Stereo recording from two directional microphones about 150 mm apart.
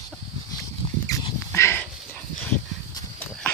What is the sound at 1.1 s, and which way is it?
Dog, 20° left (ahead or behind).